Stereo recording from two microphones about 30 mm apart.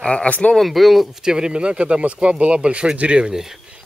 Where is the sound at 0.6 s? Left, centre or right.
Centre.